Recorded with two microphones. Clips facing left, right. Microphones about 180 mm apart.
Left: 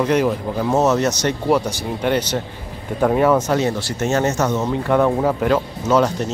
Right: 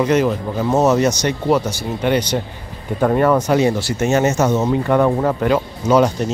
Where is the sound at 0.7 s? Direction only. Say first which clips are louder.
Right 3 dB; 10° right (ahead or behind).